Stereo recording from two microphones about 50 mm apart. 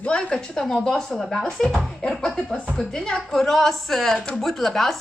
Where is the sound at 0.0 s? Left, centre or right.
Centre.